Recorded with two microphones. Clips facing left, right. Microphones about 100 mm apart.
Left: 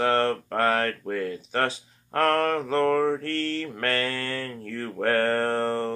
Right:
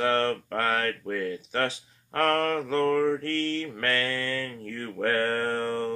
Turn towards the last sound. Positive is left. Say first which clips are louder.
# left 2 dB
turn(degrees=45)  # may be behind; listen again after turning